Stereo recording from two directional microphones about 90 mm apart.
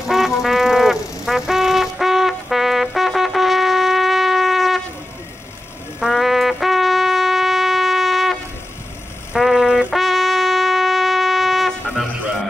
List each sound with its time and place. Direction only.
0.1 s brass instrument: 5° right (ahead or behind)
5.9 s music: 5° right (ahead or behind)